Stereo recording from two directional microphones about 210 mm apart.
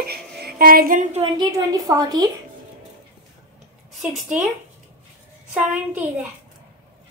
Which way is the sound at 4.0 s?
5° right (ahead or behind).